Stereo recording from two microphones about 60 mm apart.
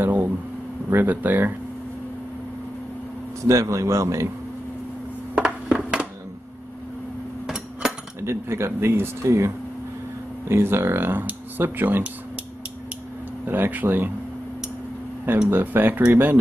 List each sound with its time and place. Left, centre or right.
0.0 s a sound: right
0.8 s speech: right
3.4 s a man's voice: right
5.3 s a sound: centre
8.2 s speech: right
10.5 s speech: right
13.5 s speech: right
15.4 s speech: right